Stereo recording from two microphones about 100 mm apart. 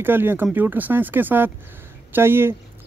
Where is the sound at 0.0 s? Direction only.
20° right (ahead or behind).